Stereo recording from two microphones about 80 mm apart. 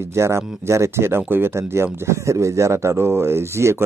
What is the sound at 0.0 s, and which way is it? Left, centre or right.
Speech, right.